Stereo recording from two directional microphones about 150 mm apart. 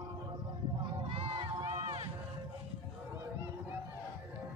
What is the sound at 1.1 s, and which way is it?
Crowd, 35° right (ahead or behind).